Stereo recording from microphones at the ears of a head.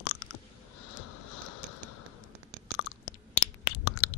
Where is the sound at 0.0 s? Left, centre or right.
Left.